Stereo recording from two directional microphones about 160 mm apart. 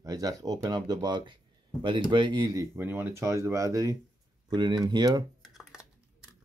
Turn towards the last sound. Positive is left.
turn(degrees=-25)  # may be behind; listen again after turning